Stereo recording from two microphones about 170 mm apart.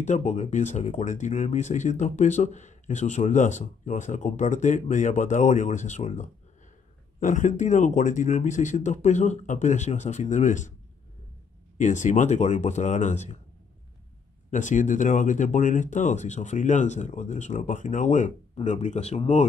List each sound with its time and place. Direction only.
0.0 s speech: 45° left (ahead or behind)
11.8 s speech: 45° left (ahead or behind)
14.5 s speech: 50° left (ahead or behind)